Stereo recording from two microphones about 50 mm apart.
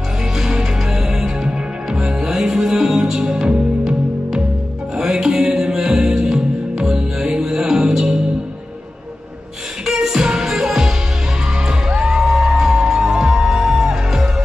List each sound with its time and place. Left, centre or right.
0.4 s music: centre
3.2 s music: centre
4.9 s music: centre
9.8 s music: centre